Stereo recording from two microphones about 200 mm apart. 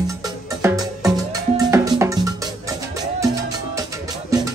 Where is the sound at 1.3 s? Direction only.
15° right (ahead or behind).